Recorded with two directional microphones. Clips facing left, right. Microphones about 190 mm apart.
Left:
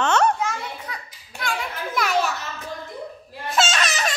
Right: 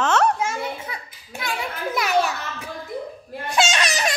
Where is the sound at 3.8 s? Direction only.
15° right (ahead or behind).